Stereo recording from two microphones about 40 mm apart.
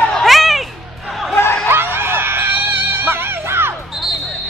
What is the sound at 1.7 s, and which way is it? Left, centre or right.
Music, right.